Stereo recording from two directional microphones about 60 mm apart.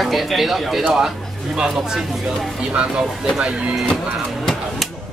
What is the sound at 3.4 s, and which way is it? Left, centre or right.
Speech, centre.